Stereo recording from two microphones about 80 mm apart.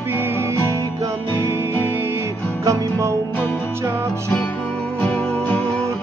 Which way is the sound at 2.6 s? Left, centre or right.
Right.